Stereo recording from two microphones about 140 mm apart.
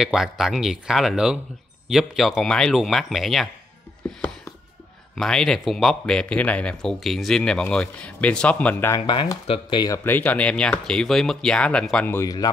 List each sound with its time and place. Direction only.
0.0 s speech: 5° right (ahead or behind)
4.0 s music: 5° left (ahead or behind)
5.1 s speech: 5° left (ahead or behind)
8.9 s speech: 35° left (ahead or behind)
10.0 s speech: 10° left (ahead or behind)
12.2 s speech: 25° left (ahead or behind)